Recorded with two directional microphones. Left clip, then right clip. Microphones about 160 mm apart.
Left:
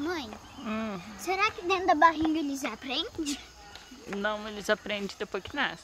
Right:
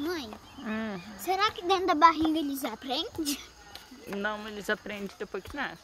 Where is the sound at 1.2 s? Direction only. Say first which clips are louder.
Even; 20° right (ahead or behind).